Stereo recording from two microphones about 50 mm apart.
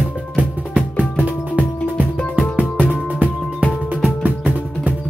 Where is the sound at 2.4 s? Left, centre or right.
Left.